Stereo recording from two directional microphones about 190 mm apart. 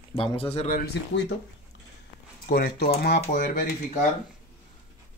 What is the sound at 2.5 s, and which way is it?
Speech, 55° left (ahead or behind).